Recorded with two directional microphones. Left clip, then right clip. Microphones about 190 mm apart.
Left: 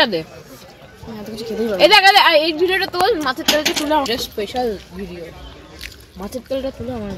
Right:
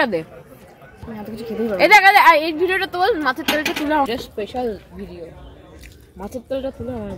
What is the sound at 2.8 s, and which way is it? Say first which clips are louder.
Speech: left 1 dB; 35° right (ahead or behind).